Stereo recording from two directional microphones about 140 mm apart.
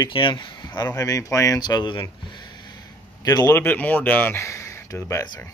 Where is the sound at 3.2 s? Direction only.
25° left (ahead or behind).